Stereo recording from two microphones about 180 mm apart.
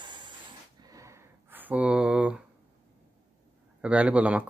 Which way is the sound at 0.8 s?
20° right (ahead or behind).